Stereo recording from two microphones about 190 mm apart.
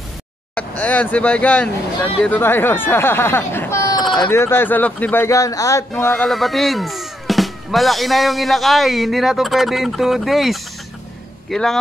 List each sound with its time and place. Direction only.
0.6 s speech: 5° left (ahead or behind)